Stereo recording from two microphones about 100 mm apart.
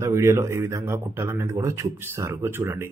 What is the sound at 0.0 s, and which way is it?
A man's voice, 30° right (ahead or behind).